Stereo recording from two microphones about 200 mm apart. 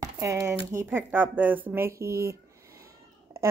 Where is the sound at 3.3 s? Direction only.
15° right (ahead or behind).